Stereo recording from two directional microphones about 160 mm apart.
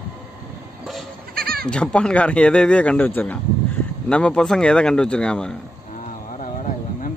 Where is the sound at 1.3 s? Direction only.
70° right (ahead or behind).